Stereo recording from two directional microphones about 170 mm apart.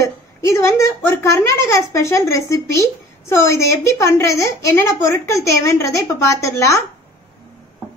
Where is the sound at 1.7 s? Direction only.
15° left (ahead or behind).